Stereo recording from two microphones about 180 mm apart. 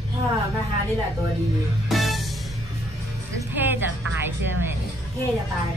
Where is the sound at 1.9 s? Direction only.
Centre (ahead or behind).